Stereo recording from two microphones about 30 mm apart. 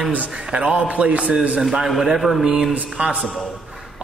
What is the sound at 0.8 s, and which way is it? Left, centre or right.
Speech, right.